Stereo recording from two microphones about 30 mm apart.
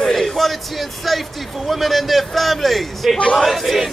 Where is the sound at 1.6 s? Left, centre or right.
Centre.